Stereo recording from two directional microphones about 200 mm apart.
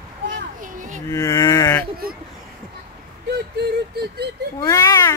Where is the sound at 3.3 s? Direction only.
55° right (ahead or behind).